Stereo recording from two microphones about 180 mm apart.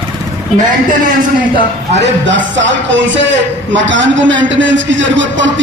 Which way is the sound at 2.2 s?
90° right.